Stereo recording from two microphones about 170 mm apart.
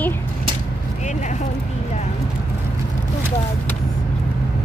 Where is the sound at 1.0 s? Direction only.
45° left (ahead or behind).